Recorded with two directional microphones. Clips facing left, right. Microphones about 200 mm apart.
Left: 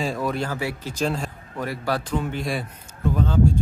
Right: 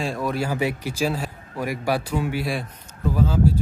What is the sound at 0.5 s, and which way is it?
A man's voice, 15° right (ahead or behind).